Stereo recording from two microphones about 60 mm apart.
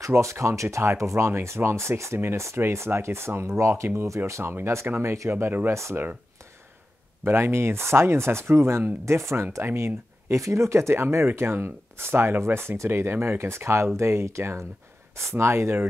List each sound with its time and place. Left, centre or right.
0.0 s speech: right
5.3 s speech: right
5.7 s speech: right
7.2 s speech: right